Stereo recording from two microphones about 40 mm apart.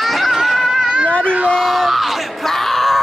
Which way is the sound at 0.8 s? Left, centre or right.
Right.